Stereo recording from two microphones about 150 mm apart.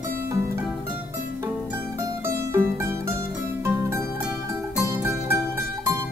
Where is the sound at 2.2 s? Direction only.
15° right (ahead or behind).